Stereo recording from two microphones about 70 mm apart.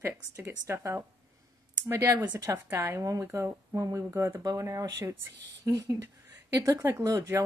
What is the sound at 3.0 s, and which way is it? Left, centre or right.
Speech, right.